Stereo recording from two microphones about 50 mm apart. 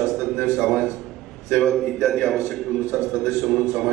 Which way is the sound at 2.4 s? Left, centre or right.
Left.